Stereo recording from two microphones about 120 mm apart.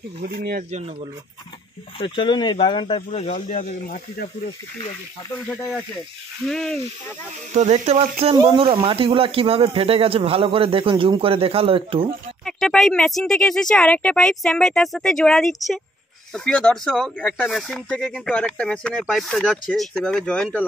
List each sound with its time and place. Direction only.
2.0 s speech: 40° left (ahead or behind)
3.1 s speech: 60° left (ahead or behind); by 4.0 s 80° left
6.4 s speech: 5° left (ahead or behind)
7.5 s speech: 70° right (ahead or behind)
8.5 s speech: 50° right (ahead or behind)
12.4 s speech: 5° left (ahead or behind)